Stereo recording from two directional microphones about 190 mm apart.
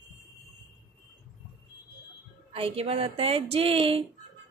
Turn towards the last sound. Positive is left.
turn(degrees=-30)  # may be behind; listen again after turning